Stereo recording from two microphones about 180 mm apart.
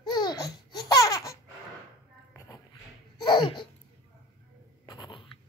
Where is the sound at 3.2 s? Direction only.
25° left (ahead or behind).